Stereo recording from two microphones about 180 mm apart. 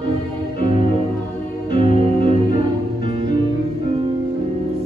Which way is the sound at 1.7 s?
50° left (ahead or behind).